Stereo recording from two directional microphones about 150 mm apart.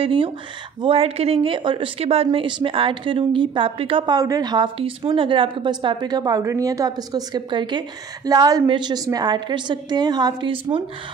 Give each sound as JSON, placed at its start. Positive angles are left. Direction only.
{"t": 0.0, "sound": "a woman's voice", "side_deg": -35}